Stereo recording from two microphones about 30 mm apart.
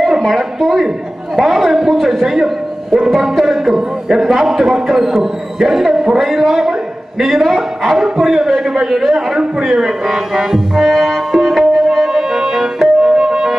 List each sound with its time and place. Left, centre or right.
0.0 s a man's voice: centre
10.8 s music: centre
12.1 s music: centre